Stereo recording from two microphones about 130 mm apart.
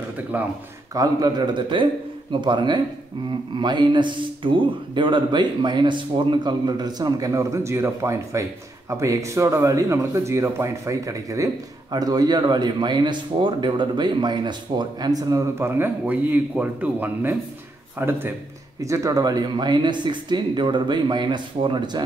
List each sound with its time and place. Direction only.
0.3 s a man's voice: 10° right (ahead or behind)
0.9 s a man's voice: 30° right (ahead or behind)